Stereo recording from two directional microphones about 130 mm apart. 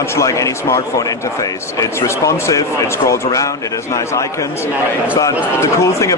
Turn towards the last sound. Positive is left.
turn(degrees=25)  # may be behind; listen again after turning